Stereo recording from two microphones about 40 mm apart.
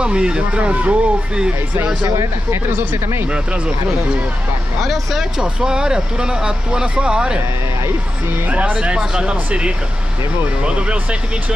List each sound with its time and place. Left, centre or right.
0.0 s speech: right
2.5 s speech: right
5.4 s speech: centre
8.5 s speech: right
8.8 s speech: right